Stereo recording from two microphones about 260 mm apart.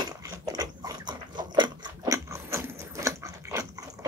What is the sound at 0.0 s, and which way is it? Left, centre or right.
Dog, centre.